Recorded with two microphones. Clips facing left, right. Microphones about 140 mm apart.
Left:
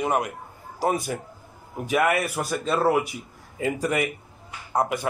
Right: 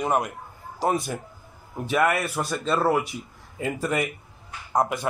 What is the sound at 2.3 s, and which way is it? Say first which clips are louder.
Speech: even; 55° left (ahead or behind).